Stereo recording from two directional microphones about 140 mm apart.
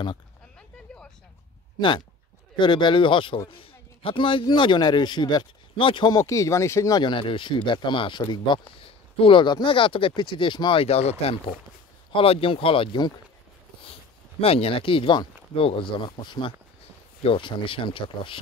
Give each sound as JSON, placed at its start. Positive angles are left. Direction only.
{"t": 1.8, "sound": "a man's voice", "side_deg": 35}
{"t": 14.4, "sound": "a man's voice", "side_deg": 45}